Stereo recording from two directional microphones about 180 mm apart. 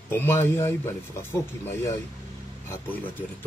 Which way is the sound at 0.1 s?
15° left (ahead or behind).